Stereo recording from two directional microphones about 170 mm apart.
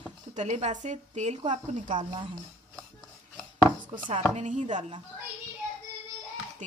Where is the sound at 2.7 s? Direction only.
5° left (ahead or behind).